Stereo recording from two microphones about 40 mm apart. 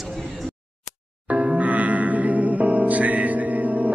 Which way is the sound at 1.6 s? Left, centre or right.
Right.